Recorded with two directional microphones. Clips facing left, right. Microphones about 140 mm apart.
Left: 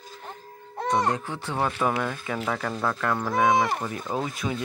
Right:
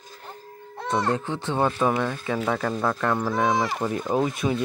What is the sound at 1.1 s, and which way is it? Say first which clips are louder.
Speech: right 4 dB; 25° right (ahead or behind).